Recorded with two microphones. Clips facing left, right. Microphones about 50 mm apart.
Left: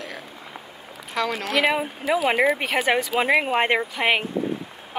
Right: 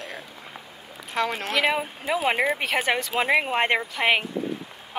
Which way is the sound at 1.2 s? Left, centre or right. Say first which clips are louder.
Left 1 dB; right.